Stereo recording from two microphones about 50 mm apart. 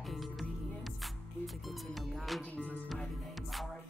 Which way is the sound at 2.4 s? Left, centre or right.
Left.